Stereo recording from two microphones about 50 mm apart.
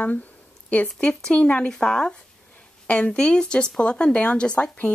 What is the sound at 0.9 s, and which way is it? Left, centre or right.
Speech, left.